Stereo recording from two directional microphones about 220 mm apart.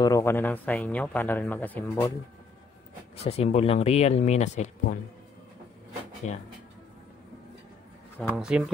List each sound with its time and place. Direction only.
0.0 s speech: 10° left (ahead or behind)
3.2 s speech: 30° left (ahead or behind)
6.2 s speech: 30° left (ahead or behind)
8.2 s speech: centre (ahead or behind)